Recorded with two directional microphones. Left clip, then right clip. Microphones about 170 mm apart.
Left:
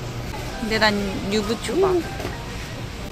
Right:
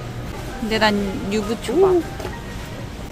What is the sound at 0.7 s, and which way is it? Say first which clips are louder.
Speech: right 1 dB; 25° right (ahead or behind).